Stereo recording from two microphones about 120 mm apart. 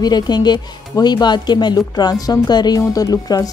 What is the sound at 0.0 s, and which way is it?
Speech, 35° left (ahead or behind).